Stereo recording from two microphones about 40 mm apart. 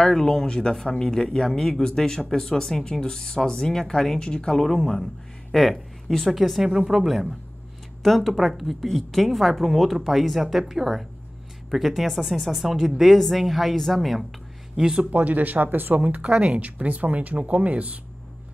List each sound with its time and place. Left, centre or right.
0.0 s speech: centre
0.5 s speech: left; by 6.1 s centre
6.6 s a woman's voice: centre
15.0 s speech: right
16.3 s speech: right